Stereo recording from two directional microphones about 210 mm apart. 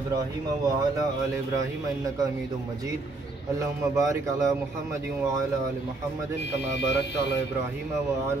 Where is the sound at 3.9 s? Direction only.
15° right (ahead or behind).